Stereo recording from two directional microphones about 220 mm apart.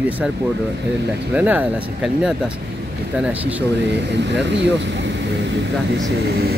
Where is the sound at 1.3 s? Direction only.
5° right (ahead or behind).